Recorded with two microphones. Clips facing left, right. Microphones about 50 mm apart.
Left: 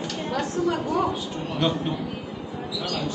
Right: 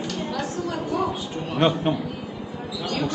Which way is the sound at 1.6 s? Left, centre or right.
Right.